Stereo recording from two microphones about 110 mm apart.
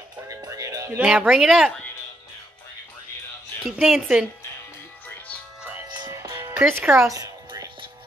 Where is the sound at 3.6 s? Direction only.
Centre (ahead or behind).